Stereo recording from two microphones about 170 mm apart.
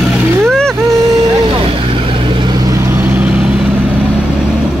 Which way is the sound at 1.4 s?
30° right (ahead or behind).